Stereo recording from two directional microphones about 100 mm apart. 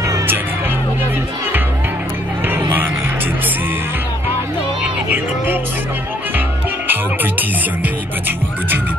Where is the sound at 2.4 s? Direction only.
20° right (ahead or behind).